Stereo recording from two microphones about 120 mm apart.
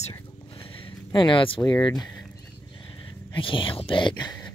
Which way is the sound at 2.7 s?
45° left (ahead or behind).